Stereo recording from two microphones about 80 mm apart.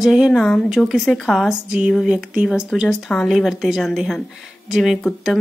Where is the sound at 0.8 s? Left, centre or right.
Centre.